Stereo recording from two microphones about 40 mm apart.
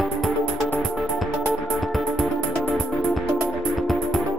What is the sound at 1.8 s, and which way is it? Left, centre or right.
Music, centre.